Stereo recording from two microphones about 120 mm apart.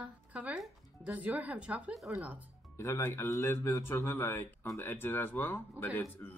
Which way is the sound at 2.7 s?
25° left (ahead or behind).